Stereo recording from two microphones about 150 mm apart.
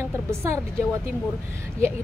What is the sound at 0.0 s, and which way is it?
Speech, 20° right (ahead or behind).